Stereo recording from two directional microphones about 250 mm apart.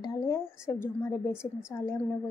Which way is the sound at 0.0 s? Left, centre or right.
Centre.